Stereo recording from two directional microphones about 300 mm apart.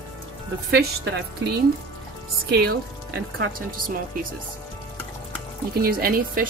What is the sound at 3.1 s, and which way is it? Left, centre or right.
Speech, right.